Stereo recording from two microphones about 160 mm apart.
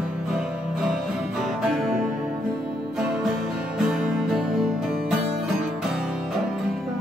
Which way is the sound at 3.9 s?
5° right (ahead or behind).